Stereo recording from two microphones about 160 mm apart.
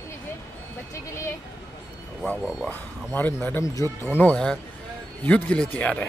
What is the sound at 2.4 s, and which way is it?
Speech, 5° right (ahead or behind).